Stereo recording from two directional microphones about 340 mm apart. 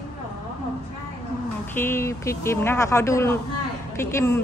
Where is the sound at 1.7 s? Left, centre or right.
Centre.